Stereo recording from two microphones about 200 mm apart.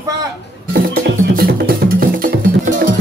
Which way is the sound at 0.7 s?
50° right (ahead or behind).